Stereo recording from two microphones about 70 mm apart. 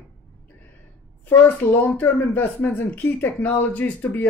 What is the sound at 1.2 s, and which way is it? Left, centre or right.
Speech, left.